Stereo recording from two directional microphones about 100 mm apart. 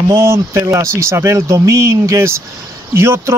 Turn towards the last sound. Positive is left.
turn(degrees=-25)  # may be behind; listen again after turning